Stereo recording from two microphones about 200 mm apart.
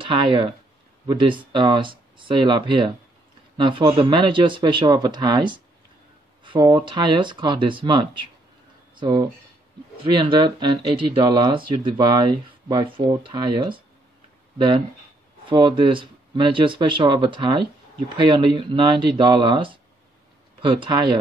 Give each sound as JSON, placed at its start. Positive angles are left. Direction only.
{"t": 0.0, "sound": "speech", "side_deg": -25}
{"t": 15.4, "sound": "speech", "side_deg": -25}